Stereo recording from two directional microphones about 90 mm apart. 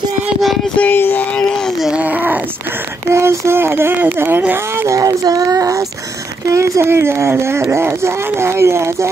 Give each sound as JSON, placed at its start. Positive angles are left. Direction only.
{"t": 0.7, "sound": "speech", "side_deg": 20}
{"t": 1.8, "sound": "a sound", "side_deg": -5}
{"t": 2.0, "sound": "a sound", "side_deg": -20}
{"t": 3.1, "sound": "speech", "side_deg": -30}
{"t": 4.8, "sound": "child singing", "side_deg": -40}
{"t": 6.5, "sound": "speech", "side_deg": -30}